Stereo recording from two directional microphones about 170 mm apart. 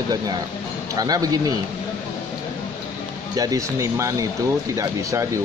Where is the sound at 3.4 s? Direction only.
20° right (ahead or behind).